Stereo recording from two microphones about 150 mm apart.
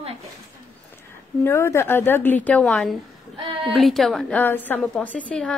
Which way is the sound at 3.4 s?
35° right (ahead or behind).